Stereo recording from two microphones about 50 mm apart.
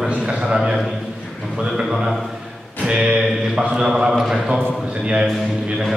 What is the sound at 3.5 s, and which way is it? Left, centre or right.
A man's voice, centre.